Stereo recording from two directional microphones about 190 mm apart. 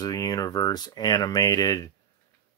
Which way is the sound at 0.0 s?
20° left (ahead or behind).